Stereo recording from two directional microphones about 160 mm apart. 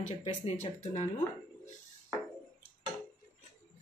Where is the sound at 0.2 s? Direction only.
40° left (ahead or behind).